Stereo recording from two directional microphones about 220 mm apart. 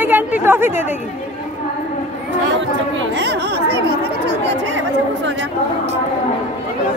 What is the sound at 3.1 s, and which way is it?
Speech, 50° right (ahead or behind).